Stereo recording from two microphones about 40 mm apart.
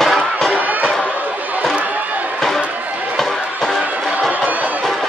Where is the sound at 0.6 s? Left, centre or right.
Right.